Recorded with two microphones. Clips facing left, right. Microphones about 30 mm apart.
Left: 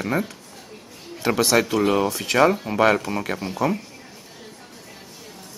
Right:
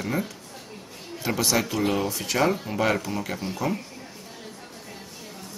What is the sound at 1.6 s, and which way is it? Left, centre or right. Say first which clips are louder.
Speech: left 5 dB; centre.